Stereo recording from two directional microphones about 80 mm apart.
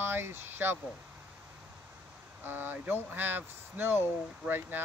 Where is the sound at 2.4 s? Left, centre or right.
Right.